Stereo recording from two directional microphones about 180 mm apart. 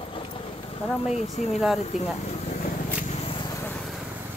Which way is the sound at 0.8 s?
10° left (ahead or behind).